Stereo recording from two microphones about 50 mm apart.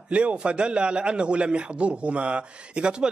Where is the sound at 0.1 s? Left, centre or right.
Right.